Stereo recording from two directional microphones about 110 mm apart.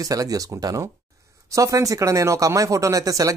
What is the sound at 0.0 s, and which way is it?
Speech, 35° right (ahead or behind).